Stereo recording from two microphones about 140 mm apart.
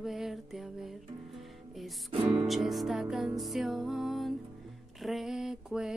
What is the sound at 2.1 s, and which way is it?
Music, 40° right (ahead or behind).